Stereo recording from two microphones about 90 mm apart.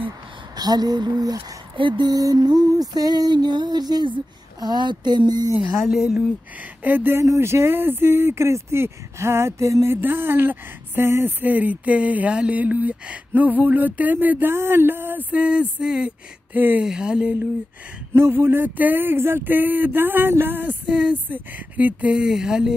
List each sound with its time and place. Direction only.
0.6 s music: 50° right (ahead or behind)
1.8 s music: 60° right (ahead or behind)
5.6 s music: 5° right (ahead or behind)
6.8 s speech: 20° right (ahead or behind)
9.9 s speech: 25° right (ahead or behind)
16.8 s a sound: 10° right (ahead or behind)
18.1 s speech: 25° right (ahead or behind); by 22.8 s 10° right (ahead or behind)